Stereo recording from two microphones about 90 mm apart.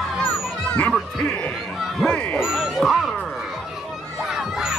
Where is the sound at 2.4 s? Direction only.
5° right (ahead or behind).